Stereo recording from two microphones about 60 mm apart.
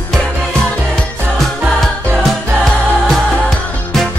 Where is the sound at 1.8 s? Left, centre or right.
Centre.